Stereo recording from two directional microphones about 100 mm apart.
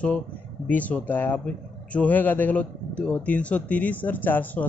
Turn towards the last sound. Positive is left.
turn(degrees=20)  # may be behind; listen again after turning